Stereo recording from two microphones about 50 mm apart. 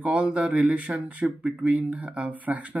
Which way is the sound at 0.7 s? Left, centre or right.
Right.